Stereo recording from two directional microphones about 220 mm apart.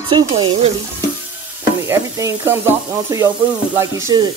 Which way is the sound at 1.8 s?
10° right (ahead or behind).